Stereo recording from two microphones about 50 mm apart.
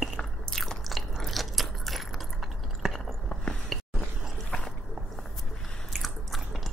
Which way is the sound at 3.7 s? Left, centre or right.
Centre.